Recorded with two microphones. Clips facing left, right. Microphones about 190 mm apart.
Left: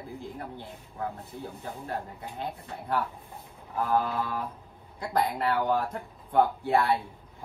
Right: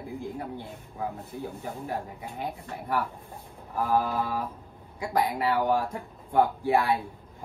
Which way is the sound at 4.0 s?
5° right (ahead or behind).